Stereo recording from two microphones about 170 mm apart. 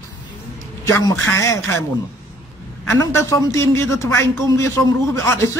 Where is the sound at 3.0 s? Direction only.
15° left (ahead or behind).